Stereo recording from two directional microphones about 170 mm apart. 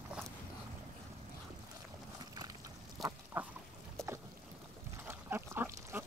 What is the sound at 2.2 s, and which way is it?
Boat, 25° right (ahead or behind).